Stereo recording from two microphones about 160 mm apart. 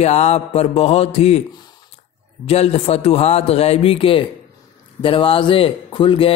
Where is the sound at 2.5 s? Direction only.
40° left (ahead or behind).